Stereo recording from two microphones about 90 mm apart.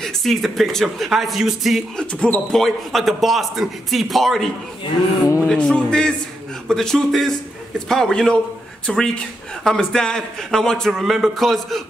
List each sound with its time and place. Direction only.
0.0 s a man's voice: centre (ahead or behind)
2.1 s a man's voice: 15° left (ahead or behind)
5.2 s a sound: 35° left (ahead or behind)
5.5 s a man's voice: 10° left (ahead or behind)